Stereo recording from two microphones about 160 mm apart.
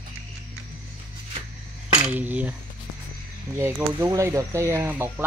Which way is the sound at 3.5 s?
15° right (ahead or behind).